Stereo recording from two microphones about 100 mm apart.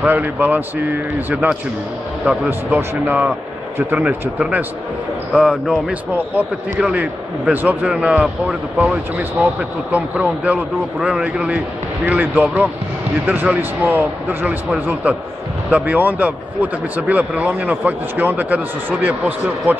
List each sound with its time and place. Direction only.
0.1 s a man's voice: 20° right (ahead or behind)
2.2 s speech: 5° right (ahead or behind)
15.7 s speech: 15° right (ahead or behind)